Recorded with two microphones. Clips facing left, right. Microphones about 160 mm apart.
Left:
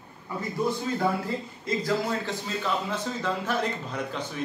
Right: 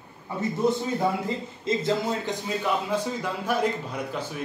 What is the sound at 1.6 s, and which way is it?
A man's voice, 20° right (ahead or behind).